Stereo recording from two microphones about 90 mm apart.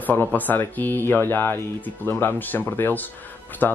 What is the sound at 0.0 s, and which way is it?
Speech, 20° left (ahead or behind).